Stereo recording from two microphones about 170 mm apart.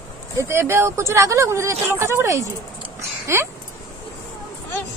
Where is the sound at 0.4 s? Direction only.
15° right (ahead or behind).